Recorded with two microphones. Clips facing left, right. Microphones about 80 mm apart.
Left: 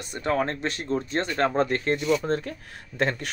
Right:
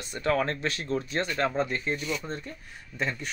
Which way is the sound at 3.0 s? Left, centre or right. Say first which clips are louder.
Left 6 dB; left.